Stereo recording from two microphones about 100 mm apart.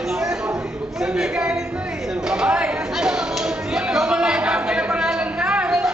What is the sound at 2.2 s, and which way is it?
Chatter, 5° right (ahead or behind).